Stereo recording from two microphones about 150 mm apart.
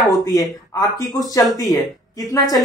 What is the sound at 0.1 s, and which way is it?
Speech, 25° left (ahead or behind).